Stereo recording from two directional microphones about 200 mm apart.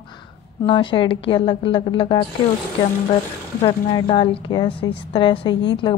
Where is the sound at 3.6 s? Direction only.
25° left (ahead or behind).